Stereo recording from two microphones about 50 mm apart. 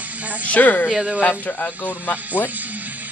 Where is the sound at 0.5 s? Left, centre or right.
Left.